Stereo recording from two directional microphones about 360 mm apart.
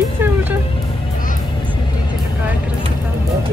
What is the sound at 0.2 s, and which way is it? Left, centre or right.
Music, centre.